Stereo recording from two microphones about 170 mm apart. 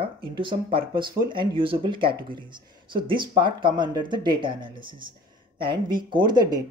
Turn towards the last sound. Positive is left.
turn(degrees=-25)  # may be behind; listen again after turning